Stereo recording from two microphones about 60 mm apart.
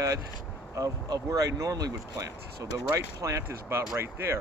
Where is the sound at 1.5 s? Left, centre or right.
Right.